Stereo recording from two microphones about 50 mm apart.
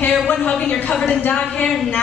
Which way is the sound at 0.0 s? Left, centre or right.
Left.